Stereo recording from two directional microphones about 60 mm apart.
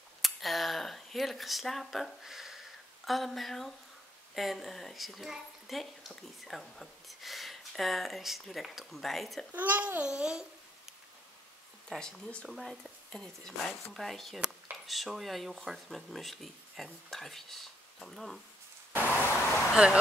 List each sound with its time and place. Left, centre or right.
0.2 s a woman's voice: centre
9.5 s a child's voice: right
10.0 s babbling: centre
12.0 s speech: centre
12.4 s a woman's voice: centre
18.9 s vehicle: left
19.7 s babbling: centre